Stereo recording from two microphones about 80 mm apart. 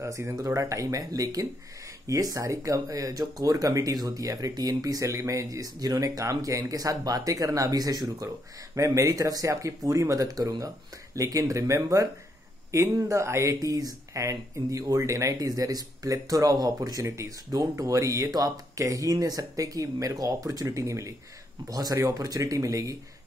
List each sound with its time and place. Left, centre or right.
0.0 s speech: right